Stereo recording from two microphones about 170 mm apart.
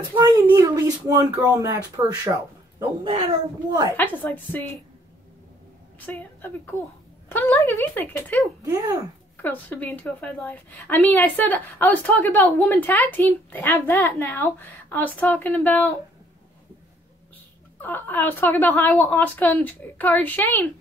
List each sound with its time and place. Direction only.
0.2 s speech: 20° right (ahead or behind)
3.9 s a woman's voice: 10° left (ahead or behind)
5.9 s a woman's voice: 10° left (ahead or behind)
8.6 s speech: 20° right (ahead or behind)
9.4 s a woman's voice: 10° left (ahead or behind)
17.7 s a woman's voice: 10° left (ahead or behind)